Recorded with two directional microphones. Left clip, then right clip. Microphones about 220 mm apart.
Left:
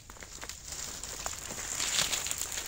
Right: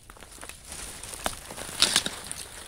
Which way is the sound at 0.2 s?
35° right (ahead or behind).